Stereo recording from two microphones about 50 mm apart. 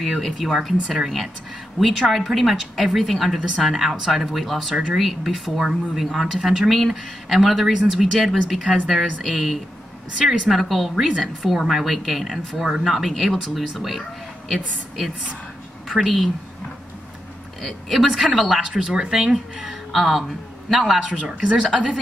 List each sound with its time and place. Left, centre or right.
0.2 s speech: centre
3.3 s speech: centre
6.6 s speech: centre
6.9 s speech: centre
10.5 s speech: centre
15.9 s speech: centre
17.6 s speech: centre
18.0 s speech: centre
21.1 s speech: centre